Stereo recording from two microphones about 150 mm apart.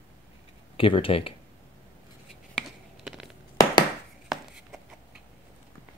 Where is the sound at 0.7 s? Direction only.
35° left (ahead or behind).